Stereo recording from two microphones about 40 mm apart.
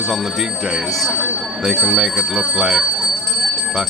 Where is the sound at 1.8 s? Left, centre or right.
Centre.